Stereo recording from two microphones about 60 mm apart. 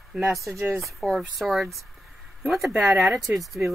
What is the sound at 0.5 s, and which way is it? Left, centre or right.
Speech, right.